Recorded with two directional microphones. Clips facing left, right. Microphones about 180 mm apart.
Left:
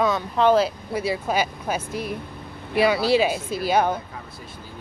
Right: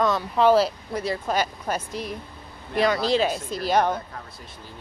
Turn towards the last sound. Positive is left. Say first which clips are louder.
# left 1 dB
turn(degrees=5)  # may be behind; listen again after turning